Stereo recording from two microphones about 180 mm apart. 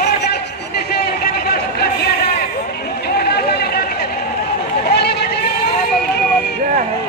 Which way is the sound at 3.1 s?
60° left (ahead or behind).